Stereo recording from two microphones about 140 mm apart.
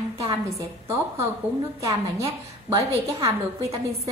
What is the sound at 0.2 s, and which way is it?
Speech, 20° right (ahead or behind).